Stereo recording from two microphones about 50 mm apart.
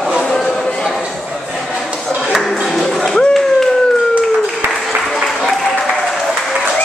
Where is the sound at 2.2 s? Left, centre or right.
Centre.